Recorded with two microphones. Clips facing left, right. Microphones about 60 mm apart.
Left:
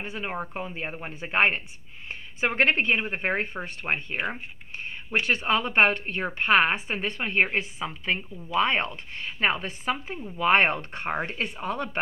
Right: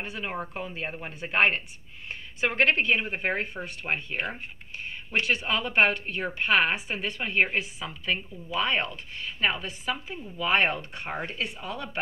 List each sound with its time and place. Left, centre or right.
0.0 s a woman's voice: left
4.3 s a sound: left
5.2 s a woman's voice: left